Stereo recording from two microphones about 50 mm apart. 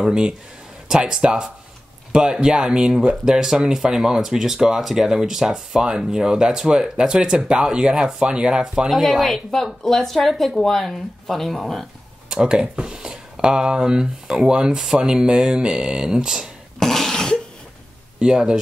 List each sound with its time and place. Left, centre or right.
0.0 s speech: centre
8.9 s a woman's voice: centre
12.3 s speech: centre
16.8 s cough: centre
18.2 s speech: centre